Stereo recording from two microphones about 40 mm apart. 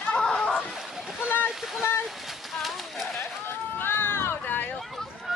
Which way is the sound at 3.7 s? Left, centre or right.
Left.